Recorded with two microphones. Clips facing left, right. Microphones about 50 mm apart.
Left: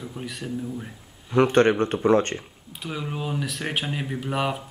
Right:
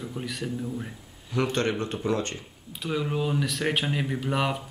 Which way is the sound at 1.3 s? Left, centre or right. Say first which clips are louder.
Left 8 dB; left.